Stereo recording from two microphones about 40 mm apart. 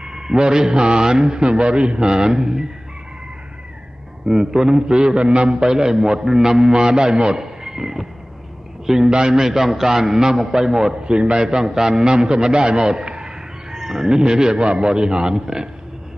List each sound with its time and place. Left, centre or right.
0.0 s a man's voice: centre
4.3 s a man's voice: centre
11.1 s a man's voice: right